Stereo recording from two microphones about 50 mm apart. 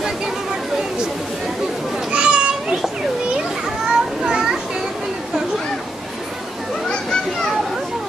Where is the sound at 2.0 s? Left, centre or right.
Centre.